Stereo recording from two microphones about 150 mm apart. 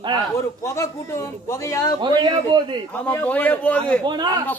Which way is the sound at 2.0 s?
30° right (ahead or behind).